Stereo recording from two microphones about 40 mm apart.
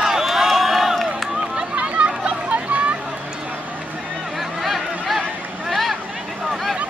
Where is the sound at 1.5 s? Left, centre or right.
Right.